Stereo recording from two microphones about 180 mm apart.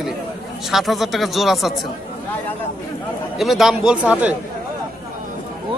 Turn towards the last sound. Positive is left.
turn(degrees=-10)  # may be behind; listen again after turning